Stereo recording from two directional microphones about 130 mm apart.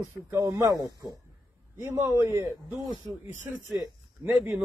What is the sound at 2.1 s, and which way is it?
Speech, 25° right (ahead or behind).